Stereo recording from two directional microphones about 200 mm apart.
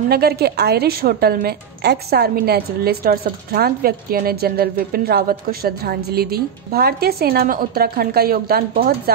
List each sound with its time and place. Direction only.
0.1 s a woman's voice: 50° right (ahead or behind)